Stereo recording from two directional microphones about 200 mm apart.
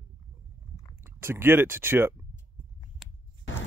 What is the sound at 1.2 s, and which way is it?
Speech, 10° right (ahead or behind).